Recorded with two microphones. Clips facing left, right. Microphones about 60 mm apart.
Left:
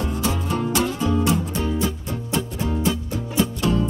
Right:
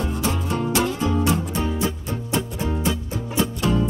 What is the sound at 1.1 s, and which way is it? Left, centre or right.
Music, centre.